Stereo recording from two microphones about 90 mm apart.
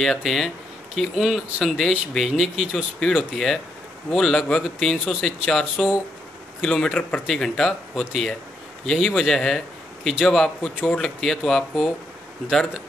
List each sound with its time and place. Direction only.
0.0 s speech: centre (ahead or behind)
6.6 s a man's voice: 5° left (ahead or behind)